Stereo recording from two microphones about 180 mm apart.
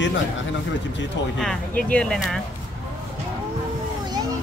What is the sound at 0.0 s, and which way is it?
Speech, 90° left.